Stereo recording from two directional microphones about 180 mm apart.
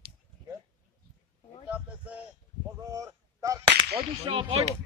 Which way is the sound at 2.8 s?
15° right (ahead or behind).